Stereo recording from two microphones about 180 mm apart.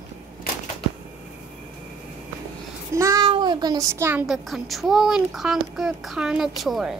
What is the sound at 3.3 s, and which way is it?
Speech, 25° right (ahead or behind).